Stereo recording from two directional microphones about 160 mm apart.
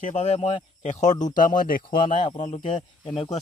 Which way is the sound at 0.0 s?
50° left (ahead or behind).